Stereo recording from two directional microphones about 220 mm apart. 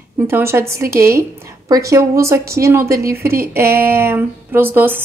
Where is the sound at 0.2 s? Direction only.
10° right (ahead or behind).